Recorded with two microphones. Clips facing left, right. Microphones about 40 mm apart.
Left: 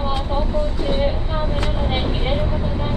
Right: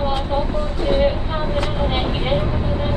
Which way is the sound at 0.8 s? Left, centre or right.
Centre.